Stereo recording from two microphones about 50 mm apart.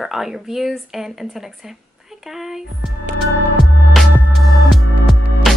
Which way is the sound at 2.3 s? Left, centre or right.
Centre.